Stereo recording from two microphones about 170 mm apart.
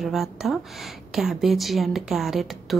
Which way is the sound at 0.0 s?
Centre (ahead or behind).